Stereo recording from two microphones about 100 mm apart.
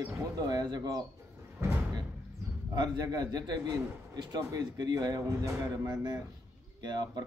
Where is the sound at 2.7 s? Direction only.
45° right (ahead or behind).